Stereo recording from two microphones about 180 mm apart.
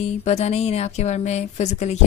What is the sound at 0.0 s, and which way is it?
A woman's voice, 35° left (ahead or behind).